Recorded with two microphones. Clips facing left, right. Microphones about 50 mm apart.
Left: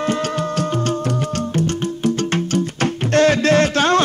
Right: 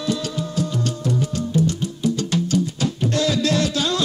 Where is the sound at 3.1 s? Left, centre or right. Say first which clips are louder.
Left 8 dB; left.